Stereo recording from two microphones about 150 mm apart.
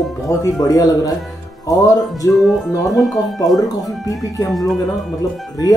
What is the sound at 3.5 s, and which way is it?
Speech, 25° left (ahead or behind).